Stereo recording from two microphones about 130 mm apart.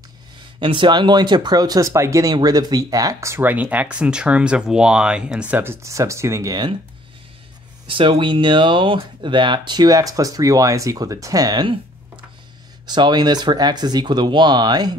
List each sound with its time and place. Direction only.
0.6 s speech: 40° right (ahead or behind)
7.8 s speech: 40° right (ahead or behind)
12.8 s speech: 35° right (ahead or behind)